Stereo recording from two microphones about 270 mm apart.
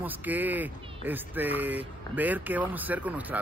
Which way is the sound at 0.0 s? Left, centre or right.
Centre.